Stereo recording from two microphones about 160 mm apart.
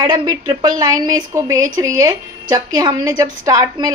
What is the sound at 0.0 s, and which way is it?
A woman's voice, 30° right (ahead or behind).